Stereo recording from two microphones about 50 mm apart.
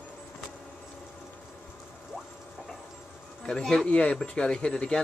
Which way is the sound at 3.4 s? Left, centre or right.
Centre.